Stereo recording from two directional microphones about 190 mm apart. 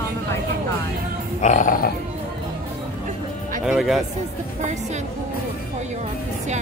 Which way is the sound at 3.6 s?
Centre (ahead or behind).